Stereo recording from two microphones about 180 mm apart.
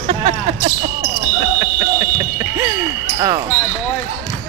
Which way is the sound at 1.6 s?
20° right (ahead or behind).